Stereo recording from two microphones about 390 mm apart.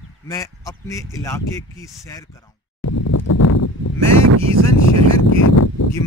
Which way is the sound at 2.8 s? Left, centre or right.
Left.